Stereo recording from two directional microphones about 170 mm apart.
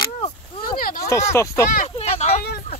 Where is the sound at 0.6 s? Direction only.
55° left (ahead or behind).